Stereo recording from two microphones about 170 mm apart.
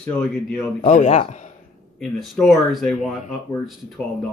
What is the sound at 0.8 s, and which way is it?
Speech, 40° left (ahead or behind).